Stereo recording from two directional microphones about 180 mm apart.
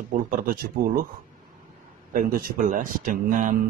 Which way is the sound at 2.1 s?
50° right (ahead or behind).